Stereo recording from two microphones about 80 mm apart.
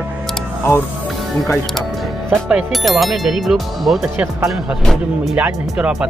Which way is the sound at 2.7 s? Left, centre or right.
Centre.